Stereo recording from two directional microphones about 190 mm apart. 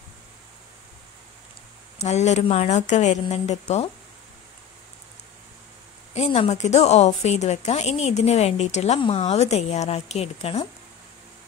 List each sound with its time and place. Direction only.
2.0 s a woman's voice: 35° left (ahead or behind)
6.1 s a woman's voice: 30° left (ahead or behind)